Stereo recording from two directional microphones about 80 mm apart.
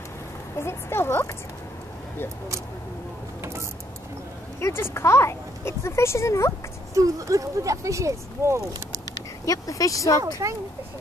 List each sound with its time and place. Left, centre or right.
0.6 s speech: left
4.6 s speech: left
6.9 s speech: right
9.5 s speech: left